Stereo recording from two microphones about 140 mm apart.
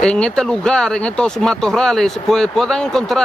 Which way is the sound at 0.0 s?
5° left (ahead or behind).